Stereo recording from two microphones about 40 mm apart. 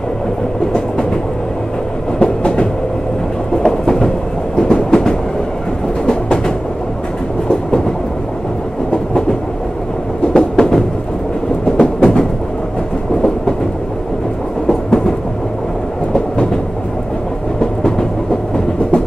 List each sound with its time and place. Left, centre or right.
0.7 s train: centre
3.6 s thunder: centre
4.6 s train: left
10.3 s a sound: centre
11.7 s train: left
14.7 s train: centre
17.6 s music: centre